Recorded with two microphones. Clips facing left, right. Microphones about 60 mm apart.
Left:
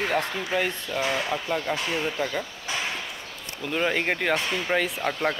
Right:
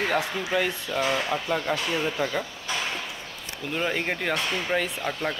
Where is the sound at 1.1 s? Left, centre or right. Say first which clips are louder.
Right 1 dB; centre.